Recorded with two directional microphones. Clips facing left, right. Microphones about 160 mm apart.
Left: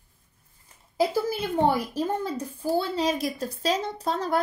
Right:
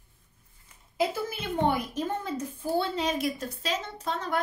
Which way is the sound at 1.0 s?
35° left (ahead or behind).